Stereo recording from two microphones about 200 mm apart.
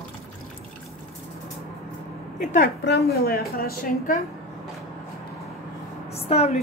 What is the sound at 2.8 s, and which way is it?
A woman's voice, 55° left (ahead or behind).